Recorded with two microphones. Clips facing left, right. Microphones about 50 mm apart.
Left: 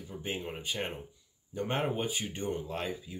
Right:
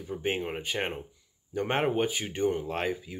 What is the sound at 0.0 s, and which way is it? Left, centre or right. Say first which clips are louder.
Speech: right 7 dB; right.